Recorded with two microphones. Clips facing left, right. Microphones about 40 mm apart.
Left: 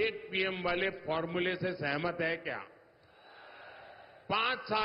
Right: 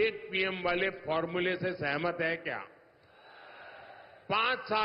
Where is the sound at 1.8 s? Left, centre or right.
Centre.